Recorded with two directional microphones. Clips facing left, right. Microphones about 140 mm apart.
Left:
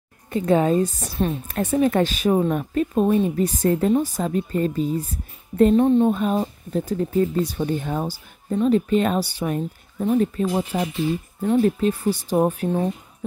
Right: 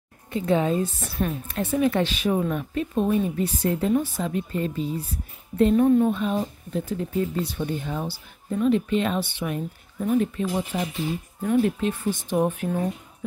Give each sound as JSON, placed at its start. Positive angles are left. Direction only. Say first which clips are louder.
{"t": 0.3, "sound": "a woman's voice", "louder": "left 4 dB", "side_deg": 45}
{"t": 1.5, "sound": "a woman's voice", "louder": "left 3 dB", "side_deg": 40}
{"t": 5.8, "sound": "speech", "louder": "left 2 dB", "side_deg": 25}
{"t": 6.1, "sound": "speech", "louder": "left 3 dB", "side_deg": 45}